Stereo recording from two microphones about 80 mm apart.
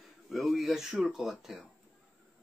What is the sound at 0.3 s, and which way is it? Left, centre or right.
Speech, centre.